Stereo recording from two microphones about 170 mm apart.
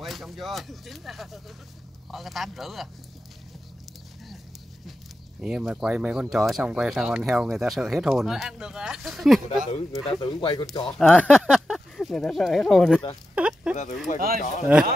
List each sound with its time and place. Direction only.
0.0 s speech: centre (ahead or behind)
5.4 s speech: 5° right (ahead or behind)
10.0 s speech: 25° left (ahead or behind)
11.0 s speech: 5° left (ahead or behind)
13.3 s a sound: 5° right (ahead or behind)
14.1 s speech: 50° left (ahead or behind)